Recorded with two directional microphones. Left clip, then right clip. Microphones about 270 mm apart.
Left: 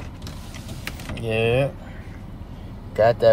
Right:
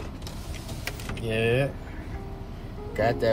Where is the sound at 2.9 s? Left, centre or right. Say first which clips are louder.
Left 8 dB; centre.